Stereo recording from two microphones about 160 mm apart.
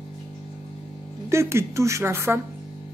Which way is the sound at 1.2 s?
15° right (ahead or behind).